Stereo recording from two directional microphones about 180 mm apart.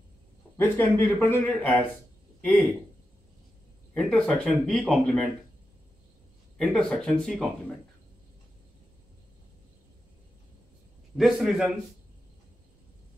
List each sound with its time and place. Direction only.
0.6 s speech: 10° left (ahead or behind)
3.9 s speech: 10° left (ahead or behind)
6.6 s speech: 5° left (ahead or behind)
11.1 s speech: centre (ahead or behind)